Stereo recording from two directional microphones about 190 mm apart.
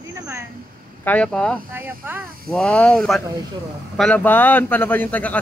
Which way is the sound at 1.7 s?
10° right (ahead or behind).